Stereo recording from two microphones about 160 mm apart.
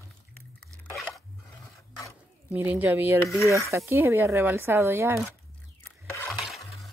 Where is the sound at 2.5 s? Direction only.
10° right (ahead or behind).